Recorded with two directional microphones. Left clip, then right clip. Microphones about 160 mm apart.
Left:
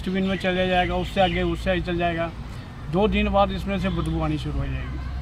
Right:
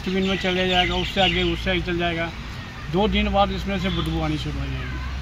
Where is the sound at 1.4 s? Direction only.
40° left (ahead or behind).